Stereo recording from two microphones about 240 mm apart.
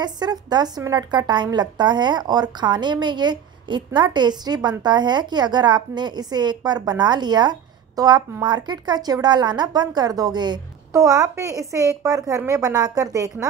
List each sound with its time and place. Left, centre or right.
0.0 s a woman's voice: centre